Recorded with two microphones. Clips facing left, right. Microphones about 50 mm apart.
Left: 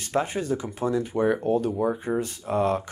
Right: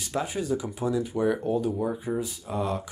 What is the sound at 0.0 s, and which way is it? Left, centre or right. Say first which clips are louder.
Speech: left 3 dB; left.